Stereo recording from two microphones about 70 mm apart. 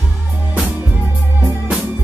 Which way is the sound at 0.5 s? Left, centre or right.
Right.